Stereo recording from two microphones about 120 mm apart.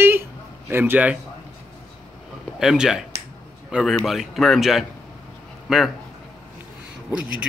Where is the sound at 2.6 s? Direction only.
5° right (ahead or behind).